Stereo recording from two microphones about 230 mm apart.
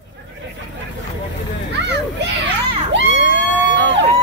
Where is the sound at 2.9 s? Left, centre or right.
Right.